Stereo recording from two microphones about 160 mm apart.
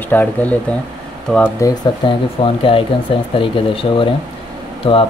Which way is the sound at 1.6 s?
30° left (ahead or behind).